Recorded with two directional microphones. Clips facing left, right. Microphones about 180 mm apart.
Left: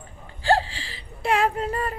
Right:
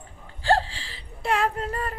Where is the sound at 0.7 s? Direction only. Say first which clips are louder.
Left 3 dB; 90° left.